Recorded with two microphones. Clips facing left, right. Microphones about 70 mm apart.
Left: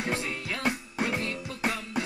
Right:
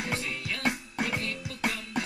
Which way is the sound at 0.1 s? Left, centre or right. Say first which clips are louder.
Left 2 dB; left.